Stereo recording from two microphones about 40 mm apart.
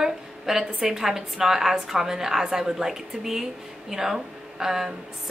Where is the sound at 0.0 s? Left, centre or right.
Centre.